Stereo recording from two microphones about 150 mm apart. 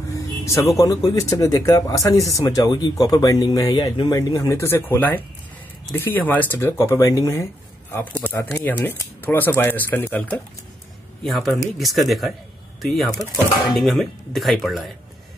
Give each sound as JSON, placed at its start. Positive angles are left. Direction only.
{"t": 0.1, "sound": "speech", "side_deg": 20}
{"t": 7.9, "sound": "speech", "side_deg": 10}
{"t": 11.2, "sound": "speech", "side_deg": 0}
{"t": 13.7, "sound": "speech", "side_deg": 0}